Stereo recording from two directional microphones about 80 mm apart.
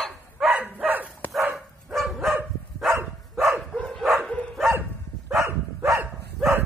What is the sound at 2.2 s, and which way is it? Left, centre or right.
Dog, centre.